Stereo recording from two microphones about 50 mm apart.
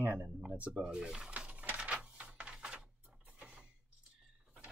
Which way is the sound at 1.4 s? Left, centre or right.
Right.